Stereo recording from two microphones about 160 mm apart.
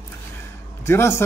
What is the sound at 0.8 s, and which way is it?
Speech, 15° left (ahead or behind).